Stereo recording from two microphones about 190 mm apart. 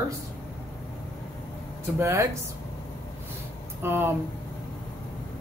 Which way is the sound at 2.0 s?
15° right (ahead or behind).